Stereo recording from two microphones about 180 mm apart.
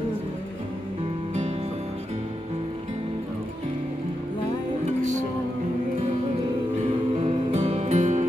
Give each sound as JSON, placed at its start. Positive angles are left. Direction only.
{"t": 7.2, "sound": "music", "side_deg": -35}